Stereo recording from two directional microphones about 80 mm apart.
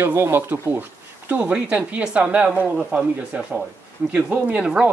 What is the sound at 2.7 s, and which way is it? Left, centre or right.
Speech, centre.